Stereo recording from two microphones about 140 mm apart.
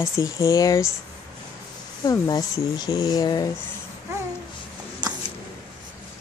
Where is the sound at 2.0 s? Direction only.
30° left (ahead or behind).